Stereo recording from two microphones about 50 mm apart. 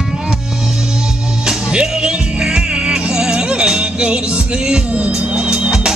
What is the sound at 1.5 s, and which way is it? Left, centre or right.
Music, centre.